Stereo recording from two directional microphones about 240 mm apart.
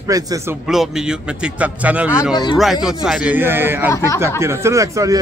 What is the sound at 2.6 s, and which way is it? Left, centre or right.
Speech, centre.